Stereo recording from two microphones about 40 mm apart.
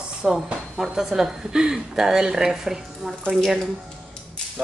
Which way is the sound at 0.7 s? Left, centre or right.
Centre.